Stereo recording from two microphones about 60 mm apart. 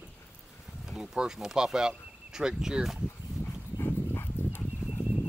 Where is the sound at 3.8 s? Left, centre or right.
Left.